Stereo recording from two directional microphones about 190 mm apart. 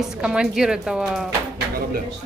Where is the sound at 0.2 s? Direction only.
5° right (ahead or behind).